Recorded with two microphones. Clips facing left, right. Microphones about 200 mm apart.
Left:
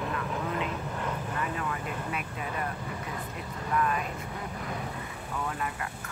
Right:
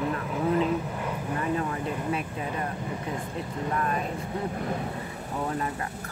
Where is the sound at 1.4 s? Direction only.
30° right (ahead or behind).